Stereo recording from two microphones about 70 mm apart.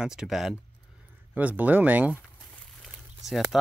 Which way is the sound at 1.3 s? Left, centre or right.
Right.